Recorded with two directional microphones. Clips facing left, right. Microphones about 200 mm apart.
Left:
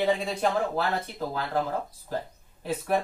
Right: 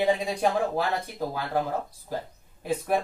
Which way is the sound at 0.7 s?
15° right (ahead or behind).